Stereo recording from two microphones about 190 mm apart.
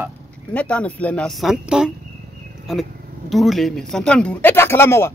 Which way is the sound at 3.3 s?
Centre (ahead or behind).